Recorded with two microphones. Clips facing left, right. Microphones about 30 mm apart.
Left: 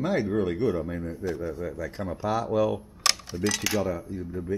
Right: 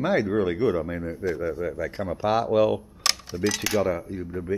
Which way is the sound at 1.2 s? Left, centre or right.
Centre.